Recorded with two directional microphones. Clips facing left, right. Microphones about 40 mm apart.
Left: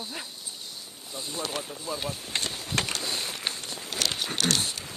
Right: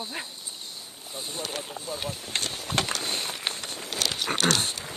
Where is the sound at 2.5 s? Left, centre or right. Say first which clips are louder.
Right 2 dB; right.